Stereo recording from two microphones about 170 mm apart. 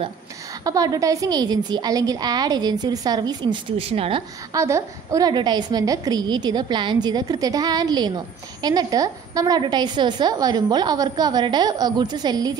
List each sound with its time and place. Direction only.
0.7 s a woman's voice: 20° right (ahead or behind)
4.6 s a woman's voice: 15° right (ahead or behind)